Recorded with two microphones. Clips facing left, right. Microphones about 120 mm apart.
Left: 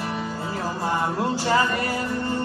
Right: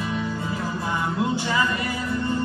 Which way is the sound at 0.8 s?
40° left (ahead or behind).